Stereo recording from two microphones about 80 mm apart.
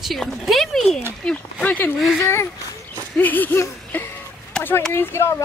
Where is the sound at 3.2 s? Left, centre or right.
Left.